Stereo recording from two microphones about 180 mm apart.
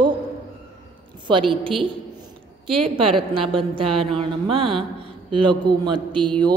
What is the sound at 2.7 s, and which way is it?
A woman's voice, 30° right (ahead or behind).